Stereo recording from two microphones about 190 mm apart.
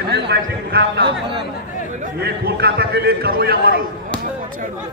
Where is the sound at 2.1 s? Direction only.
55° right (ahead or behind).